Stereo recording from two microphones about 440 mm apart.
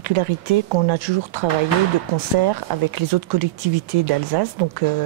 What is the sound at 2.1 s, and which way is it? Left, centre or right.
Speech, right.